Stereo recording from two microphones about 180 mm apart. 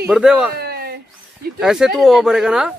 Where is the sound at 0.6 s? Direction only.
60° right (ahead or behind).